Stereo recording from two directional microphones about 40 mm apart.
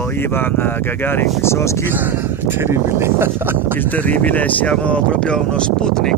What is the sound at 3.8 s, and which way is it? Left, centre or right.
Speech, left.